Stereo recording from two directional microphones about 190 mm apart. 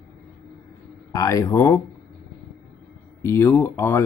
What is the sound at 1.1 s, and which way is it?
Speech, 15° left (ahead or behind).